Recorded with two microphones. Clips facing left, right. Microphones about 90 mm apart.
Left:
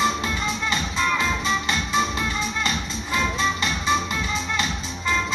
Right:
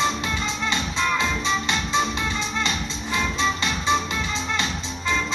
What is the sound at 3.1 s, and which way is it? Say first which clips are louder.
Music: left 1 dB; 20° right (ahead or behind).